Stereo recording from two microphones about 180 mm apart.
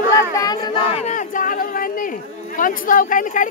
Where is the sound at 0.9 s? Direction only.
40° left (ahead or behind).